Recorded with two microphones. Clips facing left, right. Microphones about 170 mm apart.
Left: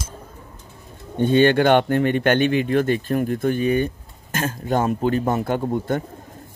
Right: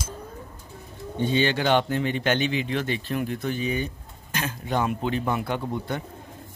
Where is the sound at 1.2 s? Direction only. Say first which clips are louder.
Left 8 dB; 55° left (ahead or behind).